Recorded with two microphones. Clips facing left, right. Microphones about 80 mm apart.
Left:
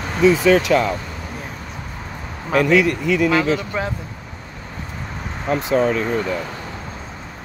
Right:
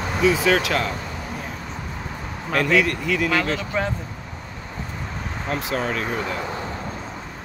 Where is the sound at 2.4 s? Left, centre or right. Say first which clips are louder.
Left 4 dB; centre.